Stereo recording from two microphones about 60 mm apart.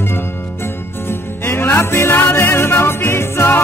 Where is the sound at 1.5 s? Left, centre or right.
Left.